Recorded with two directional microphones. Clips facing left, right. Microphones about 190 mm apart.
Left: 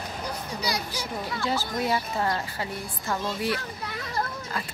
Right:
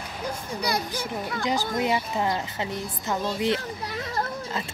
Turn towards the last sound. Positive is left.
turn(degrees=-20)  # may be behind; listen again after turning